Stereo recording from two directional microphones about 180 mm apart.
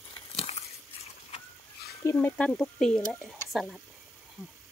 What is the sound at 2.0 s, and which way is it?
Speech, 10° left (ahead or behind).